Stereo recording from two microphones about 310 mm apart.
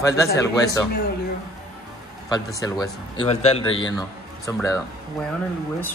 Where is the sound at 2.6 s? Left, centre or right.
Centre.